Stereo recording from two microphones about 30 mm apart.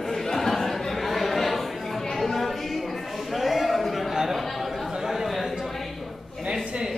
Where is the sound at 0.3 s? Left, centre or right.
Centre.